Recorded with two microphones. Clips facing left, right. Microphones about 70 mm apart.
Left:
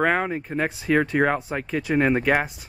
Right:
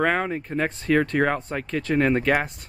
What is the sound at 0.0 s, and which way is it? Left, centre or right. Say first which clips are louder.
Speech: left 1 dB; centre.